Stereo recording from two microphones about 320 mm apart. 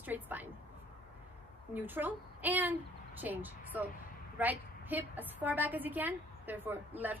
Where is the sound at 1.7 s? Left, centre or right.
Centre.